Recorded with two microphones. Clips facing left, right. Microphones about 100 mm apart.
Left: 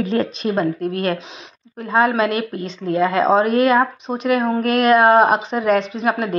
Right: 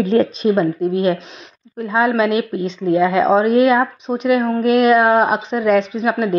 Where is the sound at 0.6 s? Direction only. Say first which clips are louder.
Right 3 dB; 10° right (ahead or behind).